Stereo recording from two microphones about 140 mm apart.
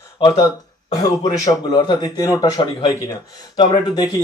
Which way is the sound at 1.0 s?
30° left (ahead or behind).